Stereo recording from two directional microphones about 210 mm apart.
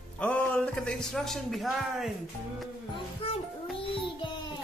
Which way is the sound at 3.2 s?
25° left (ahead or behind).